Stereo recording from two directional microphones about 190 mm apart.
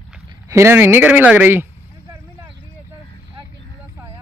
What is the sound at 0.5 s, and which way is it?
Speech, 15° right (ahead or behind).